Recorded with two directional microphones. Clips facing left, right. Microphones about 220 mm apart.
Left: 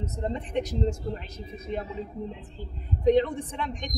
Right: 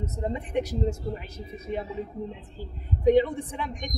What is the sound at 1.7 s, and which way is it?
Speech, 50° right (ahead or behind).